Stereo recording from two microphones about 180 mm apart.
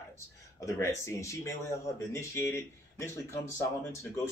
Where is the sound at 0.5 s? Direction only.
15° left (ahead or behind).